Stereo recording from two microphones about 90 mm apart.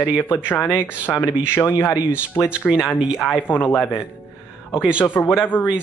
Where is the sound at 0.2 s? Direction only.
25° left (ahead or behind).